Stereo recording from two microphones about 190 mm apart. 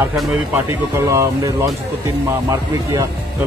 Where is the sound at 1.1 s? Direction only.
15° right (ahead or behind).